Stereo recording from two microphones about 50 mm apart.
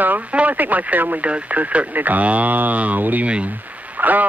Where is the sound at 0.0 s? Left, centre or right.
Right.